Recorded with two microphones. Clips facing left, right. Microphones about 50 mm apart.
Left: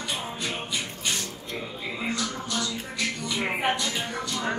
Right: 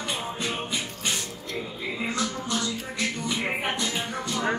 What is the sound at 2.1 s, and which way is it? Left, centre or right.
Music, right.